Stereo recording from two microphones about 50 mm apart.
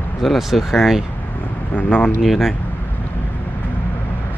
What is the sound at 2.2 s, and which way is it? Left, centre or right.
Speech, centre.